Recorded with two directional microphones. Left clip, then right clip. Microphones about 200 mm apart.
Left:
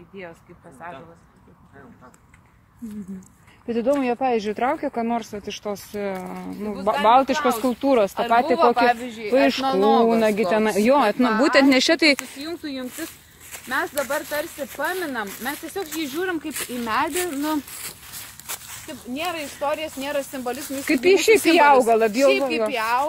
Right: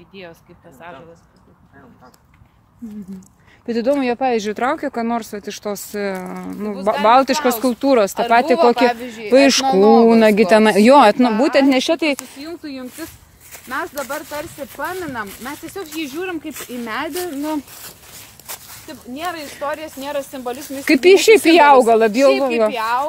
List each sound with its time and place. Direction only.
3.6 s speech: 25° right (ahead or behind)
8.2 s speech: 45° right (ahead or behind)
11.3 s speech: 10° right (ahead or behind)
11.9 s speech: centre (ahead or behind)
12.2 s speech: 15° right (ahead or behind)
14.0 s speech: 15° right (ahead or behind)
16.0 s speech: 5° right (ahead or behind)
18.5 s walk: centre (ahead or behind)
19.1 s speech: 10° right (ahead or behind)
20.8 s speech: 45° right (ahead or behind)
22.7 s speech: 10° right (ahead or behind)